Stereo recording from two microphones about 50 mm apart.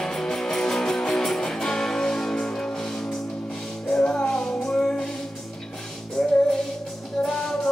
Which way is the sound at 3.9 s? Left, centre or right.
Centre.